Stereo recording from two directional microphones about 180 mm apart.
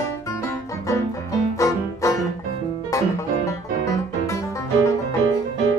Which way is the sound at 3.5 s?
15° left (ahead or behind).